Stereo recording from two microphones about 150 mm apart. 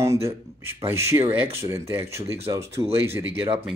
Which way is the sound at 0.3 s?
15° right (ahead or behind).